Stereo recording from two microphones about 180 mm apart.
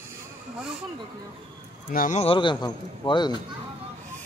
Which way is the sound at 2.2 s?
30° left (ahead or behind).